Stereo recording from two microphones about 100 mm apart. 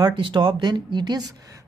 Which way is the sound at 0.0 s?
50° right (ahead or behind).